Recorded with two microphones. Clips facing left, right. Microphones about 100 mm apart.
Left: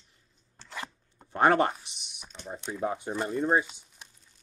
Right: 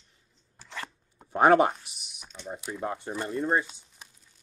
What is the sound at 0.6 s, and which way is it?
Chopping, 5° right (ahead or behind).